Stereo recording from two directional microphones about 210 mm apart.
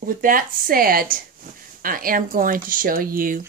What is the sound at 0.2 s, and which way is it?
Speech, 40° right (ahead or behind).